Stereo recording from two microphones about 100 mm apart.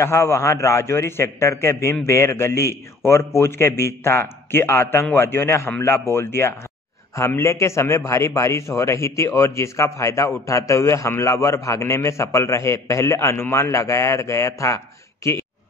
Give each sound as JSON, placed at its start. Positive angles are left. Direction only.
{"t": 0.0, "sound": "a man's voice", "side_deg": 30}